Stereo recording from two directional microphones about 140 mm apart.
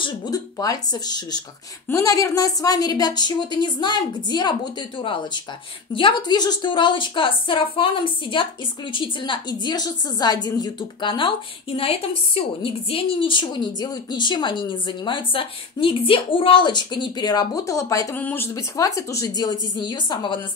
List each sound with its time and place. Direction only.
0.0 s a woman's voice: 25° left (ahead or behind)